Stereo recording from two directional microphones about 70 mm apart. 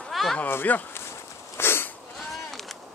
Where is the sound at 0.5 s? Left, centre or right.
Left.